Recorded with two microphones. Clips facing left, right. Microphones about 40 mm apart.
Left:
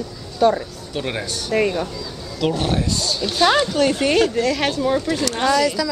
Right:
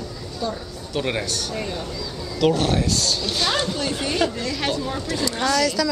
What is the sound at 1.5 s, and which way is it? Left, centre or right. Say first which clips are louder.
Speech: left 9 dB; left.